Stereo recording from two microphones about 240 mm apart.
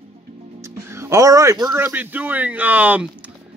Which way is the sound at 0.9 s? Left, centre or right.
Centre.